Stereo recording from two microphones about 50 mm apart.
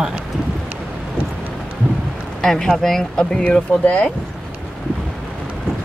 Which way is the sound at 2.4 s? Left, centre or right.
Centre.